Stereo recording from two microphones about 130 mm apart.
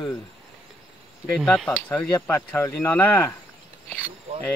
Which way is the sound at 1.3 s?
5° left (ahead or behind).